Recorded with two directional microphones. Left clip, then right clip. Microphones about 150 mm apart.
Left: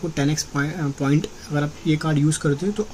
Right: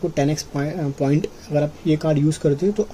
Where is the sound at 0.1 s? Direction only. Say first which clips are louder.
Right 2 dB; 20° right (ahead or behind).